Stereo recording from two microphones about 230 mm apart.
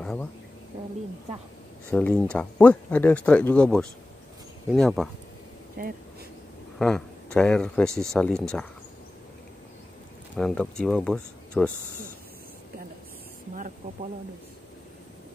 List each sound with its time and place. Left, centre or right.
0.0 s speech: centre
1.9 s speech: centre
5.8 s speech: right
6.8 s speech: centre
10.3 s speech: centre